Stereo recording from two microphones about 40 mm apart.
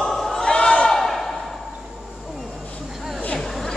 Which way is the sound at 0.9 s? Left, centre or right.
Centre.